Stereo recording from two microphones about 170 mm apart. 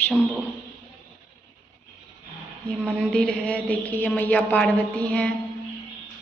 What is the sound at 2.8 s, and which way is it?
A man's voice, 5° left (ahead or behind).